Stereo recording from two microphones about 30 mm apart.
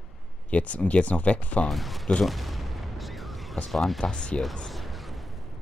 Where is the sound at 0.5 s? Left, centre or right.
Left.